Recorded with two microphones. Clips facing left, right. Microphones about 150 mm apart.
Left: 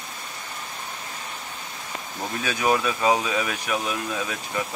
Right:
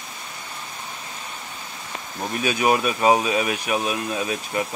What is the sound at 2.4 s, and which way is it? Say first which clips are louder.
Speech: right 3 dB; 15° right (ahead or behind).